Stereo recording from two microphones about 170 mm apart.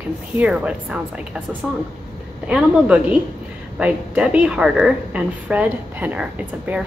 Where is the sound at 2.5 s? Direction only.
5° right (ahead or behind).